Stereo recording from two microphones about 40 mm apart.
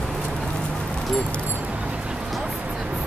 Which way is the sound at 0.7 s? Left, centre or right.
Centre.